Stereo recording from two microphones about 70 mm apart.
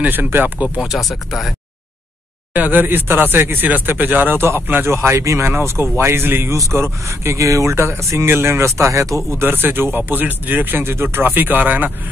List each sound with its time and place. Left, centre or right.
0.0 s speech: right
0.7 s speech: centre
2.5 s speech: right
4.9 s speech: right
6.5 s speech: right
9.4 s speech: right